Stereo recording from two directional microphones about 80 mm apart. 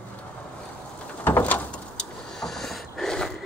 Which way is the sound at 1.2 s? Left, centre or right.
Left.